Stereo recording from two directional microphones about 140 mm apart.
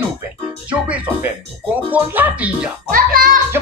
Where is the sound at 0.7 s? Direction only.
10° right (ahead or behind).